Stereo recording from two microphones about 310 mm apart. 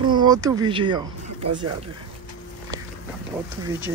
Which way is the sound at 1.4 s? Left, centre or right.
Right.